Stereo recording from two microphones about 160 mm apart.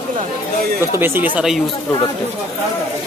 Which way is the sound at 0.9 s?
15° right (ahead or behind).